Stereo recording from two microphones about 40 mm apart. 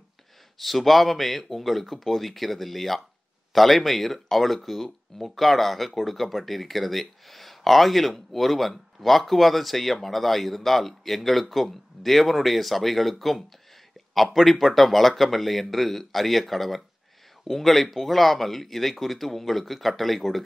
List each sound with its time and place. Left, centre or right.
0.6 s speech: centre